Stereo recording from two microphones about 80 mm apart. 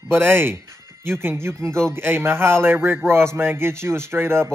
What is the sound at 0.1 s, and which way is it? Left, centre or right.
Speech, right.